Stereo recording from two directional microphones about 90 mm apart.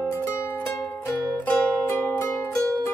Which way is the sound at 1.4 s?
20° left (ahead or behind).